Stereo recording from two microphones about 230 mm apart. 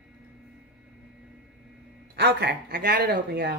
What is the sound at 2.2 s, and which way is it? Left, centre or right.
Speech, right.